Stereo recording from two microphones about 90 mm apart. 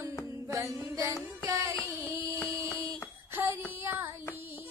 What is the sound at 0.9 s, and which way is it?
Music, 40° right (ahead or behind).